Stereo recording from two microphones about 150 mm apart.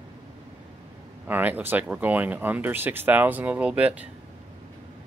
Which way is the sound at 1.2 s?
10° right (ahead or behind).